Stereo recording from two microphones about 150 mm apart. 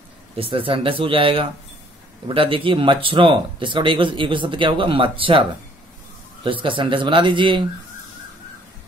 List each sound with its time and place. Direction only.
0.4 s speech: 40° right (ahead or behind)
6.4 s speech: 35° right (ahead or behind)